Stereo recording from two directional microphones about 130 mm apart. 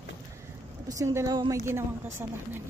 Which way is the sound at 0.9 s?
25° right (ahead or behind).